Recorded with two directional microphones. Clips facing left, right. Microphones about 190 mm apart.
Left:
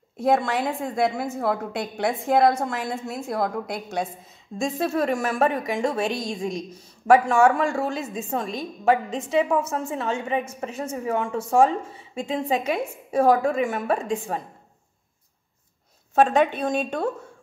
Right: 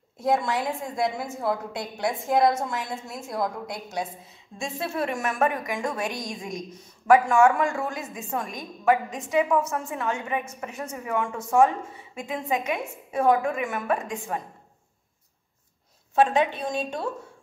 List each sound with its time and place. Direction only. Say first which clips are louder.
0.2 s a woman's voice: left 3 dB; 60° left (ahead or behind)
4.6 s a woman's voice: left 5 dB; 40° left (ahead or behind)
16.2 s a woman's voice: left 3 dB; 50° left (ahead or behind)